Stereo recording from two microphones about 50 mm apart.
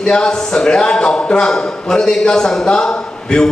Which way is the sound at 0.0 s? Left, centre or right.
Centre.